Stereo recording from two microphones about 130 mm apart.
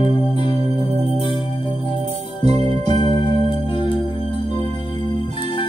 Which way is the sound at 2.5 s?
35° left (ahead or behind).